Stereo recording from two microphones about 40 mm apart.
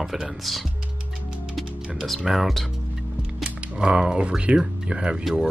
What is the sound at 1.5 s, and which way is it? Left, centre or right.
Music, centre.